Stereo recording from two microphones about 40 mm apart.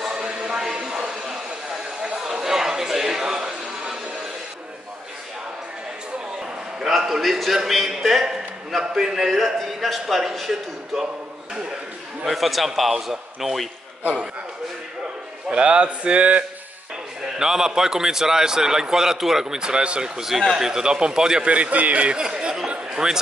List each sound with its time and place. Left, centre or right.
0.0 s a sound: centre
3.3 s music: right
6.4 s a sound: centre
7.1 s a man's voice: centre
12.3 s a man's voice: centre
15.5 s speech: right
17.4 s a man's voice: centre
19.4 s speech: centre
21.5 s a man's voice: right
22.2 s chatter: right
22.8 s a sound: centre